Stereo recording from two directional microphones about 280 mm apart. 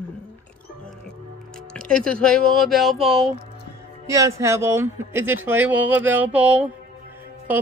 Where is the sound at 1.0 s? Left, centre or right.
Centre.